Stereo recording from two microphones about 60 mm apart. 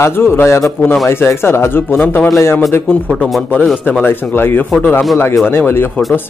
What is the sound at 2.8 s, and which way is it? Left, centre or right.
Speech, centre.